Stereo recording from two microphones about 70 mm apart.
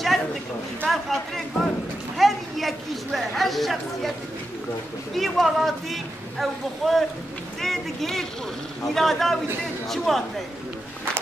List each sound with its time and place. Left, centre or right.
0.8 s speech: centre
2.1 s a sound: centre
5.1 s speech: centre